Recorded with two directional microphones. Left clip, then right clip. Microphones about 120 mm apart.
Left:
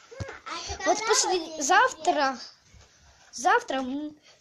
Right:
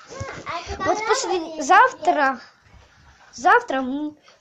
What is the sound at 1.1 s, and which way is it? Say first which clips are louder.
A child's voice: right 3 dB; 5° right (ahead or behind).